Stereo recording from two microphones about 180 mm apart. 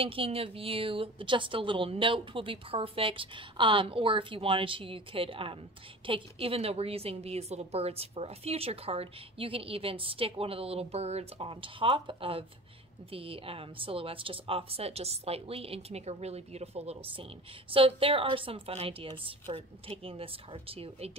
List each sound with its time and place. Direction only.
0.0 s a woman's voice: 30° right (ahead or behind)